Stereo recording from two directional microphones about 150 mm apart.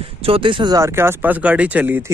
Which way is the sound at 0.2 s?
35° right (ahead or behind).